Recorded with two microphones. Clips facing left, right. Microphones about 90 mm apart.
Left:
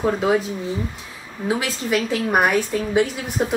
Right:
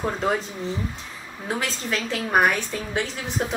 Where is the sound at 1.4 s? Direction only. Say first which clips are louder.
Left 5 dB; 5° left (ahead or behind).